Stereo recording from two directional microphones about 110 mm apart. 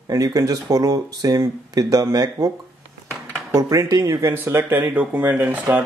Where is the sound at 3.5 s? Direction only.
30° right (ahead or behind).